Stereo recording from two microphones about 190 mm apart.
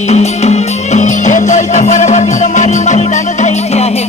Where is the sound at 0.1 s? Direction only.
35° left (ahead or behind).